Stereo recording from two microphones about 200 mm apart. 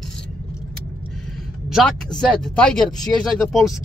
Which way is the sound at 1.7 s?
Centre (ahead or behind).